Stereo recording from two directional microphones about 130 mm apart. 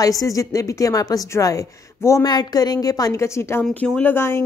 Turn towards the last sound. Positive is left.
turn(degrees=20)  # may be behind; listen again after turning